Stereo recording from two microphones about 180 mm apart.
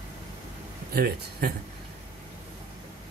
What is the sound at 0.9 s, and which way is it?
Speech, 60° right (ahead or behind).